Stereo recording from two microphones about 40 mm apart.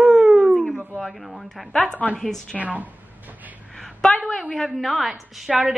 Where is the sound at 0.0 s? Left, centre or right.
Centre.